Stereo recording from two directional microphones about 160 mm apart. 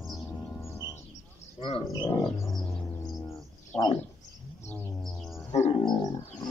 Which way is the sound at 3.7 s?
40° left (ahead or behind).